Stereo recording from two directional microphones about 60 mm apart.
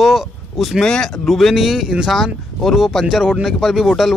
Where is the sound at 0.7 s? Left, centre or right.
Centre.